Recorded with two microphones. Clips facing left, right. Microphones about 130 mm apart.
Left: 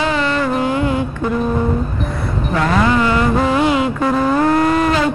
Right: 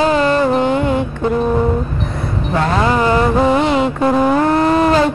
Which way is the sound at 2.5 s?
30° right (ahead or behind).